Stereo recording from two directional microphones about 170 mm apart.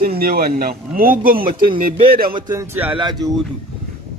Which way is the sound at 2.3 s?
20° right (ahead or behind).